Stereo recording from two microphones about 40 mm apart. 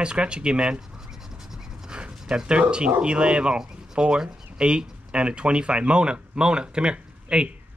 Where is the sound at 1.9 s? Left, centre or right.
Centre.